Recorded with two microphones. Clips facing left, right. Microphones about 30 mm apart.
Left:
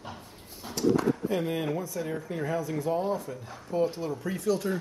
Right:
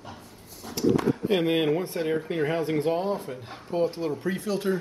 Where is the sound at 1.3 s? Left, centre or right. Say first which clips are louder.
Right 6 dB; right.